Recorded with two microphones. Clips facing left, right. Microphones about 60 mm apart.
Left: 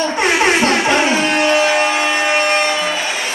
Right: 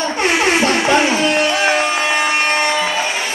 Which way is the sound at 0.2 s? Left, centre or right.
Left.